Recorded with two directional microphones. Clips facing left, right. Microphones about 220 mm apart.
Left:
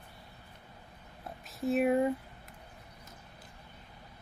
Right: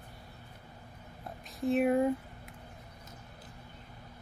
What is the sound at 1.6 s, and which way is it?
Speech, centre (ahead or behind).